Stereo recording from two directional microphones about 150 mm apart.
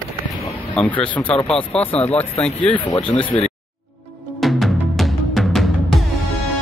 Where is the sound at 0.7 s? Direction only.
10° left (ahead or behind).